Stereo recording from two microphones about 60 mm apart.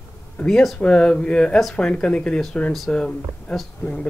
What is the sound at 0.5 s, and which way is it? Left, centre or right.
Speech, centre.